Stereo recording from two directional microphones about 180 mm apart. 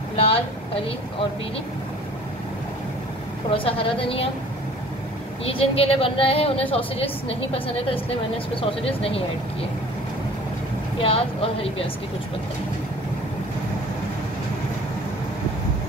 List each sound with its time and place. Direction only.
0.1 s vehicle: 30° left (ahead or behind)
3.4 s a woman's voice: 30° left (ahead or behind)
5.4 s a woman's voice: 30° left (ahead or behind)
11.0 s a woman's voice: 30° left (ahead or behind)